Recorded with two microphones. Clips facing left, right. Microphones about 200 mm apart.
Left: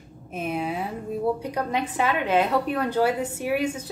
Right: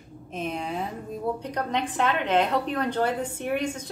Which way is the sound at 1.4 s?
10° left (ahead or behind).